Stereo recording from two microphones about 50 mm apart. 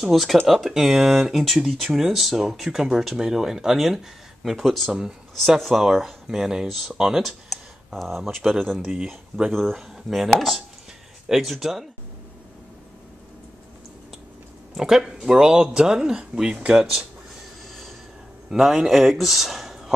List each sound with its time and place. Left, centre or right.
0.0 s speech: centre
8.9 s speech: centre
9.5 s speech: centre
14.8 s speech: centre
18.5 s speech: centre